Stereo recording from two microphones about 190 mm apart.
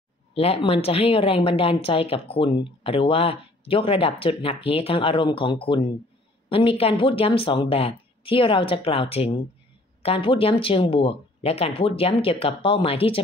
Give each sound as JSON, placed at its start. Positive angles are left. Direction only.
{"t": 0.3, "sound": "a woman's voice", "side_deg": 30}